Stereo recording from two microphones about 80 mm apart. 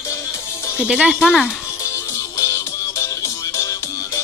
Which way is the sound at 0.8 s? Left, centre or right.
Centre.